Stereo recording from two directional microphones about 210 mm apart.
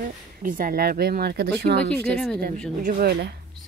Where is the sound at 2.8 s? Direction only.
40° right (ahead or behind).